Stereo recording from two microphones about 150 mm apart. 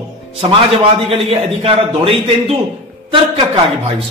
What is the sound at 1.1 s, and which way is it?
Speech, 40° right (ahead or behind).